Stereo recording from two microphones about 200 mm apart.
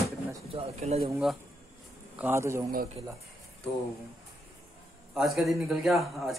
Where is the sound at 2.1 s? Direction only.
10° right (ahead or behind).